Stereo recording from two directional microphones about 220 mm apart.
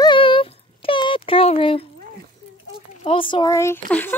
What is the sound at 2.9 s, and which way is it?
Speech, 25° left (ahead or behind).